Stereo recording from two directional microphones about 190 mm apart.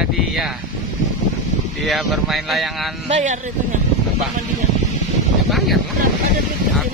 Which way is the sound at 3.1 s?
40° right (ahead or behind).